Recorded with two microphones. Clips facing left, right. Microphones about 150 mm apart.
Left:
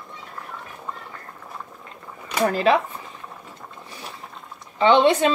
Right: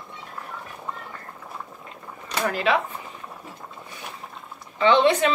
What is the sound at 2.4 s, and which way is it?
Speech, 35° left (ahead or behind).